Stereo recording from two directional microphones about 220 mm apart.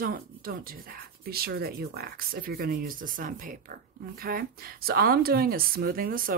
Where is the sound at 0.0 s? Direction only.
40° right (ahead or behind).